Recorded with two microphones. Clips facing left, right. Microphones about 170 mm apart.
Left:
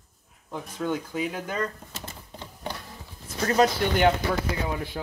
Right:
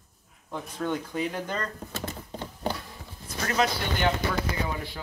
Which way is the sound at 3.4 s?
40° left (ahead or behind).